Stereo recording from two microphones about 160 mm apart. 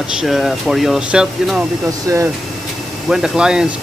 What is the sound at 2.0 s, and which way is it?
Speech, 20° right (ahead or behind).